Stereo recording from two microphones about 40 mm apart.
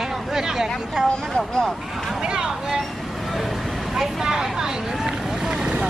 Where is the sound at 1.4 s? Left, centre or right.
Centre.